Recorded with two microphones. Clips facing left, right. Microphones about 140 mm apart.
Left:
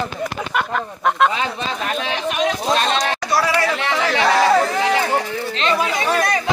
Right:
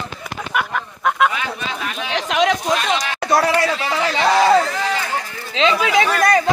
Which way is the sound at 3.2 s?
50° right (ahead or behind).